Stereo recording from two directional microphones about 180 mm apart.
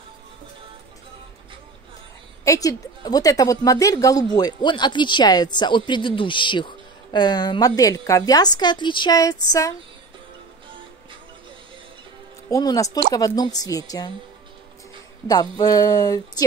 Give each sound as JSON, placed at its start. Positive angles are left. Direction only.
{"t": 2.4, "sound": "a woman's voice", "side_deg": 20}
{"t": 12.4, "sound": "a woman's voice", "side_deg": 20}
{"t": 15.2, "sound": "a woman's voice", "side_deg": 20}